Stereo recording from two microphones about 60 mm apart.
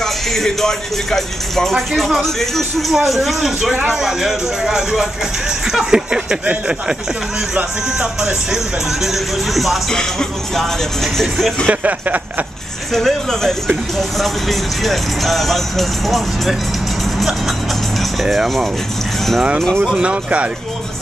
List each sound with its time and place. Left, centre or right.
0.0 s speech: centre
7.5 s speech: centre
9.0 s speech: centre
11.1 s speech: centre
11.6 s a sound: right
12.9 s speech: centre
18.2 s speech: centre
19.8 s speech: centre